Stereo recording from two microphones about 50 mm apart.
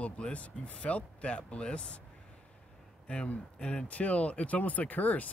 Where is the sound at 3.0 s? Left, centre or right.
Left.